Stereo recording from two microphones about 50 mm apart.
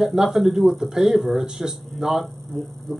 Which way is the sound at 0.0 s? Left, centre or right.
Centre.